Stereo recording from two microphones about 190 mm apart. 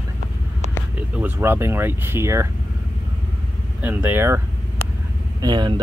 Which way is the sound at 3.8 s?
10° right (ahead or behind).